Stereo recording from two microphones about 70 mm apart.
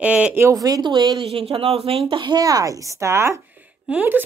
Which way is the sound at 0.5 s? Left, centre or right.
Right.